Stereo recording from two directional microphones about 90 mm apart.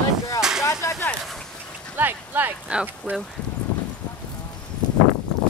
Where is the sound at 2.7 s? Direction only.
10° right (ahead or behind).